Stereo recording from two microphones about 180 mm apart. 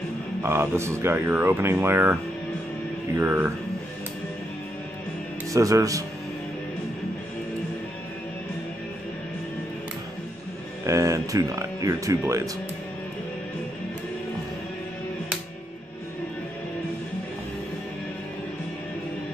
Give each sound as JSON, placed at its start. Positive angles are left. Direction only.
{"t": 0.4, "sound": "speech", "side_deg": -15}
{"t": 3.2, "sound": "speech", "side_deg": -10}
{"t": 5.5, "sound": "speech", "side_deg": -20}
{"t": 10.9, "sound": "speech", "side_deg": -15}